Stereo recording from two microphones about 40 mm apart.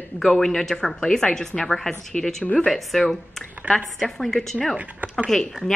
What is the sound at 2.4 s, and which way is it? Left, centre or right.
Speech, left.